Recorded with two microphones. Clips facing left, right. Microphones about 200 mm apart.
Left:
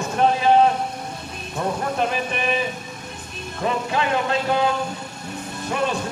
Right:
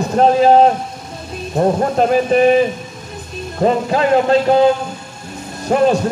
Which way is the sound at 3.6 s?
40° right (ahead or behind).